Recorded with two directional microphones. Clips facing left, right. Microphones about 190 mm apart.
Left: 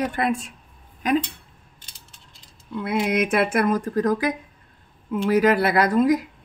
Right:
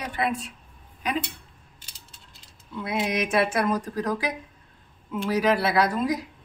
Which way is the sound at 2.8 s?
55° left (ahead or behind).